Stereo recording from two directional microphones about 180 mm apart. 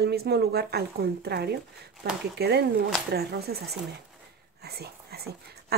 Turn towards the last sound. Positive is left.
turn(degrees=-60)  # may be behind; listen again after turning